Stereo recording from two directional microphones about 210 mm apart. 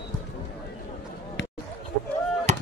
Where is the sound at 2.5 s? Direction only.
30° right (ahead or behind).